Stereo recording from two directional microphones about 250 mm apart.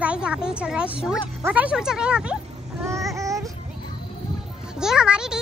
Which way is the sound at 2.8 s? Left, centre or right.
Centre.